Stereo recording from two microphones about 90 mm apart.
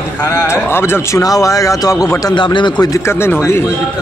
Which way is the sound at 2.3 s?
65° left (ahead or behind).